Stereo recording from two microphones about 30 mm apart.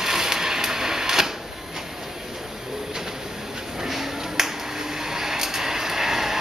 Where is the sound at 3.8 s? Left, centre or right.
Centre.